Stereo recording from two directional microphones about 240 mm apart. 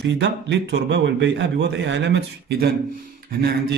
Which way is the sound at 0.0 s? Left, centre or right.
Right.